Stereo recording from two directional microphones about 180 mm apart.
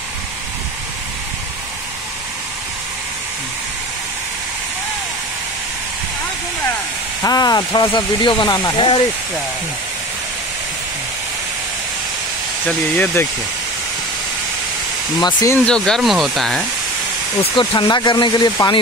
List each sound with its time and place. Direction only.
7.2 s speech: 20° left (ahead or behind)
12.6 s speech: 10° left (ahead or behind)
15.1 s speech: 20° left (ahead or behind)
15.5 s speech: 5° left (ahead or behind)
17.4 s speech: 25° left (ahead or behind)